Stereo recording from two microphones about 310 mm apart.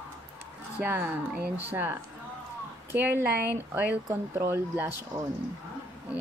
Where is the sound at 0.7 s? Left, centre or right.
Centre.